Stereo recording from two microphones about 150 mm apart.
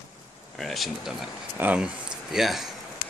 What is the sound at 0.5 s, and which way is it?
Speech, centre (ahead or behind).